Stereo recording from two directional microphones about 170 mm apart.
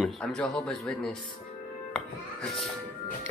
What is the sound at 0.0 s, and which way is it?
Speech, 5° left (ahead or behind).